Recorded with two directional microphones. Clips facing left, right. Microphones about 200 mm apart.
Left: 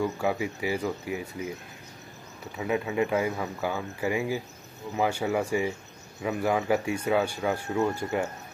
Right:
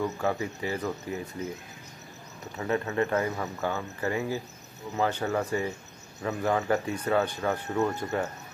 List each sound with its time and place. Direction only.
0.0 s speech: 10° left (ahead or behind)
2.5 s speech: 10° left (ahead or behind)